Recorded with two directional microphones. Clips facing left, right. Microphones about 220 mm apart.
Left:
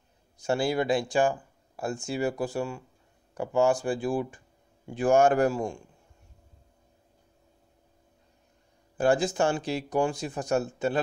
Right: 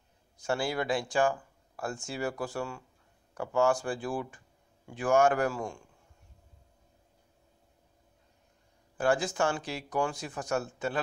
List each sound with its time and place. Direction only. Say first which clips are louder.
0.4 s speech: left 5 dB; 20° left (ahead or behind)
4.8 s speech: left 4 dB; 30° left (ahead or behind)
8.9 s speech: left 4 dB; 25° left (ahead or behind)